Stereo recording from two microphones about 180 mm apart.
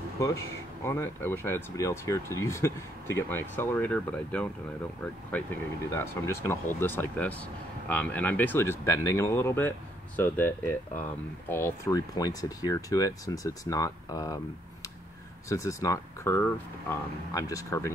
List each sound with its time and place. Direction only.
0.2 s speech: 15° left (ahead or behind)
15.4 s speech: 15° left (ahead or behind)